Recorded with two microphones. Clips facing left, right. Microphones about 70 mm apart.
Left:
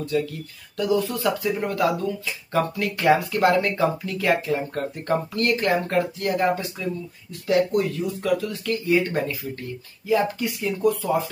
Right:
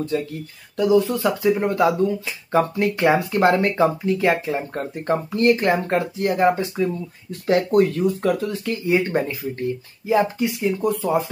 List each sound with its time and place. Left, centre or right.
0.1 s speech: right
0.7 s speech: right
8.5 s speech: right